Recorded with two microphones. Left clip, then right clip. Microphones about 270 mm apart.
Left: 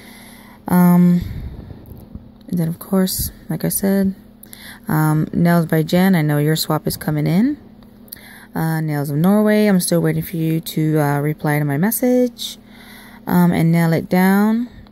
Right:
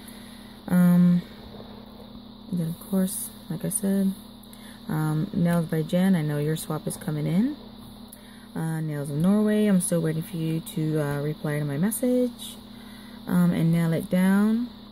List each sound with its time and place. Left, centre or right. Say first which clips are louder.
0.7 s a sound: left 8 dB; left
2.6 s speech: left 10 dB; left
8.5 s speech: left 10 dB; left